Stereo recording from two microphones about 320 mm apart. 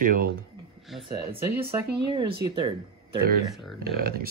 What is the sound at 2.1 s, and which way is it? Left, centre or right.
Speech, centre.